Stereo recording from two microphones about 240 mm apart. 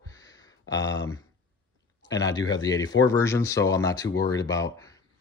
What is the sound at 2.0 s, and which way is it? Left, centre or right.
Speech, centre.